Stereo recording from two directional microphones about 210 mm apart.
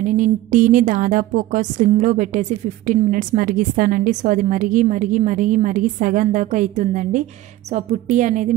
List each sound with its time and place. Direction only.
0.0 s a woman's voice: 40° right (ahead or behind)